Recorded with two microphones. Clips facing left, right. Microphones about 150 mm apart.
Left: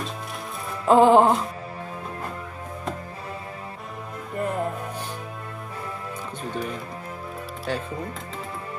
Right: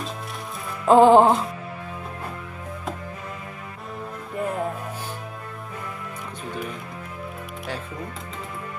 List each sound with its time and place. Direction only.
0.8 s music: centre (ahead or behind)
4.4 s music: centre (ahead or behind)